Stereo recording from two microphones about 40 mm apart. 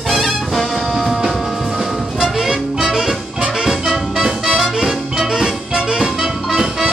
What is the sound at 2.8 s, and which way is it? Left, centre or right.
Music, centre.